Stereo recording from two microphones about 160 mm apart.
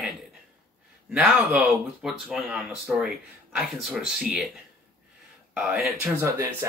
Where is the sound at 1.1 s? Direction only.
Centre (ahead or behind).